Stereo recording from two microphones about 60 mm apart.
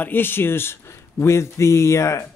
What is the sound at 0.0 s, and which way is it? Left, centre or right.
Speech, left.